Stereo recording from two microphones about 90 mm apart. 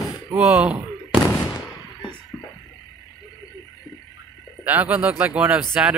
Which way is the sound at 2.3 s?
45° left (ahead or behind).